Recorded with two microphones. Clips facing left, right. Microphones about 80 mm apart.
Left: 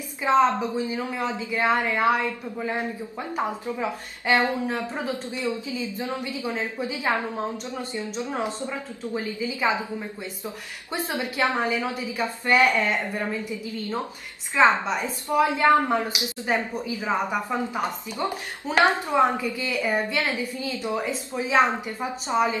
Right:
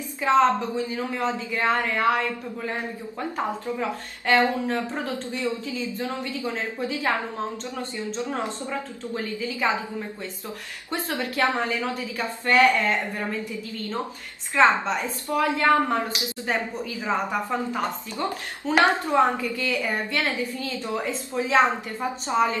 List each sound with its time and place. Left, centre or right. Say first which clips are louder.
0.2 s a woman's voice: even; centre
3.3 s a woman's voice: left 1 dB; centre
10.9 s a woman's voice: even; centre
14.5 s a woman's voice: even; centre